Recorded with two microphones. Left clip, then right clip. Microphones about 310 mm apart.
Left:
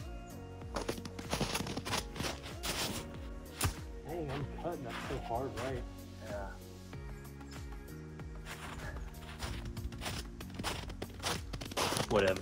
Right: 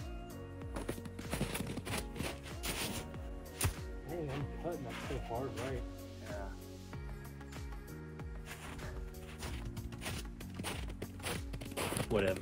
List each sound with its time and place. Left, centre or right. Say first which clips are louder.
0.7 s music: left 5 dB; centre
4.3 s speech: left 1 dB; centre
8.5 s music: left 3 dB; centre
10.0 s music: left 3 dB; centre